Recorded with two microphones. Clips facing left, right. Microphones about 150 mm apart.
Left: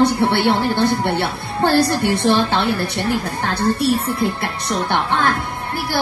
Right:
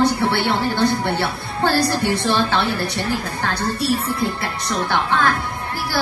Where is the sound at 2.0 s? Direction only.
55° left (ahead or behind).